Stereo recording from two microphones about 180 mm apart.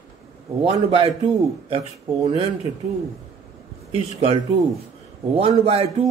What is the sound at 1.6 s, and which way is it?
Speech, 30° right (ahead or behind).